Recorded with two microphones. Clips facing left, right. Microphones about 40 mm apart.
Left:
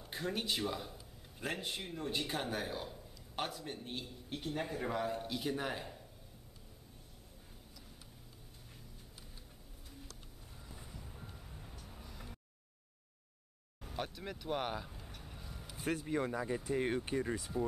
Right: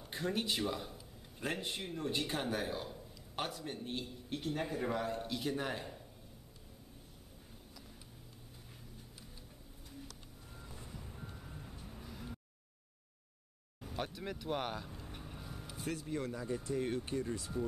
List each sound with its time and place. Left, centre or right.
0.0 s speech: centre
10.6 s reversing beeps: centre
11.9 s vehicle: centre
13.8 s speech: centre
15.0 s vehicle: centre
15.8 s speech: left